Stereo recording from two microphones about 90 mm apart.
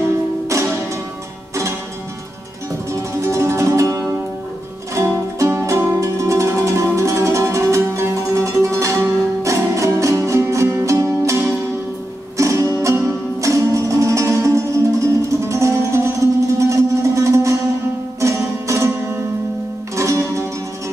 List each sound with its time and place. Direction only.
0.5 s music: 35° right (ahead or behind)
2.9 s music: 35° right (ahead or behind)
12.4 s music: 35° right (ahead or behind)